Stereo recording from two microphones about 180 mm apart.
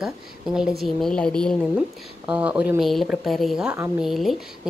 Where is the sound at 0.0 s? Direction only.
5° right (ahead or behind).